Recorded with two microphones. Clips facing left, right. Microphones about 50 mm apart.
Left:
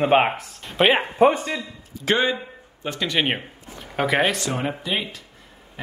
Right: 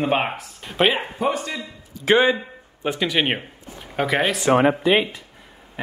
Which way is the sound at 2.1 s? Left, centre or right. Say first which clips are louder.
Right 4 dB; centre.